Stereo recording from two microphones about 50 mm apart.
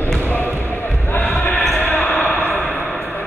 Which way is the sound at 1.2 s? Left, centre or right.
Left.